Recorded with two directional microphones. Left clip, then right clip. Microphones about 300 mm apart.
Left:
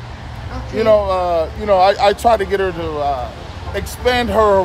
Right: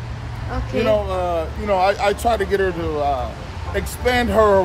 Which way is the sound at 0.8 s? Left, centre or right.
Left.